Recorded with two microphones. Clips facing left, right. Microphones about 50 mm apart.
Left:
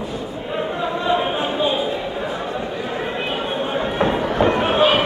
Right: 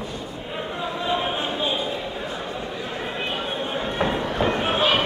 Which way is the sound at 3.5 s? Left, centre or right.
Centre.